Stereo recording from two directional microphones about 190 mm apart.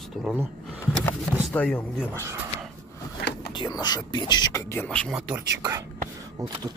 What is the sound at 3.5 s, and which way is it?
Speech, 25° left (ahead or behind).